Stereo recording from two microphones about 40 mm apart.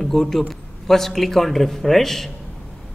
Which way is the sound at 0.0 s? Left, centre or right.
Centre.